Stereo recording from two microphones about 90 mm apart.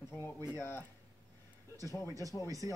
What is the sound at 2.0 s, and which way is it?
Speech, 40° right (ahead or behind).